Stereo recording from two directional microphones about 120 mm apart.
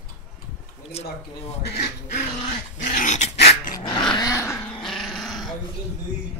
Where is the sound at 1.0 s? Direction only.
60° left (ahead or behind).